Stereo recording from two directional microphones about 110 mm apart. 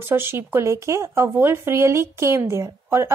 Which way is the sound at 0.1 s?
20° right (ahead or behind).